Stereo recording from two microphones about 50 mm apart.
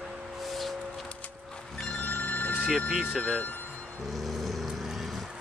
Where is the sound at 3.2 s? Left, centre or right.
Left.